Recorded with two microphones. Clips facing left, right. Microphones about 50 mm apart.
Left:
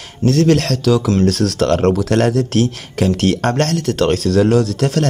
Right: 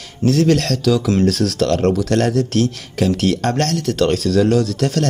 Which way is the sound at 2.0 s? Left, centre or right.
Centre.